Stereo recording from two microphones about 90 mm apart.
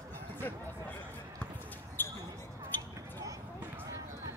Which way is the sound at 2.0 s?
25° left (ahead or behind).